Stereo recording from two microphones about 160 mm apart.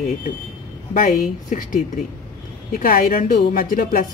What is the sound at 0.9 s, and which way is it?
Speech, 55° left (ahead or behind).